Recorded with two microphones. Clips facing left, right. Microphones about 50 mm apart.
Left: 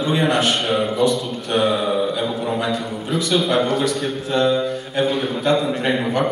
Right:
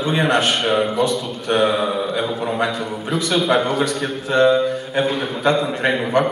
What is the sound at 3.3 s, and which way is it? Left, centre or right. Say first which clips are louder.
Speech: right 1 dB; centre.